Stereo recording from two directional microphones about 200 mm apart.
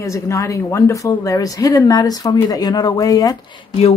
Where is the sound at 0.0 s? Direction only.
15° left (ahead or behind).